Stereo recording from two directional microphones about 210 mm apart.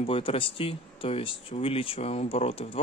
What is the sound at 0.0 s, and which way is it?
Speech, 25° left (ahead or behind).